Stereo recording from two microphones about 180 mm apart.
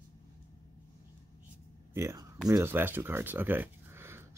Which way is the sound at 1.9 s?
15° right (ahead or behind).